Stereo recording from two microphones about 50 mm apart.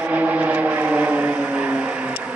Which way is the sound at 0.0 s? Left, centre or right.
Right.